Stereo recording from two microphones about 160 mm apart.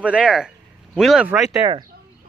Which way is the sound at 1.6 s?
30° right (ahead or behind).